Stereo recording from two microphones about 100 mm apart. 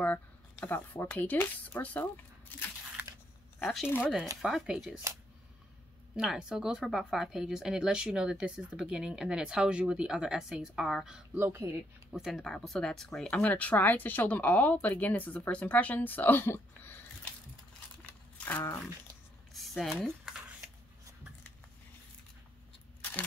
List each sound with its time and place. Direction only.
0.0 s speech: 15° left (ahead or behind)
3.6 s speech: 5° right (ahead or behind)
6.1 s speech: 5° right (ahead or behind)
11.3 s speech: 25° right (ahead or behind)
12.1 s speech: centre (ahead or behind)
13.3 s speech: 15° left (ahead or behind)
18.0 s a sound: 15° left (ahead or behind)
19.5 s a sound: centre (ahead or behind)